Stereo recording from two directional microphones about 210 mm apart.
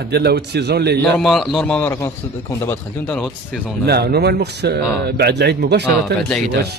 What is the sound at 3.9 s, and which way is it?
Speech, 50° right (ahead or behind).